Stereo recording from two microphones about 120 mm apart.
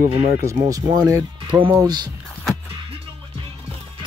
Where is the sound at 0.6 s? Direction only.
30° right (ahead or behind).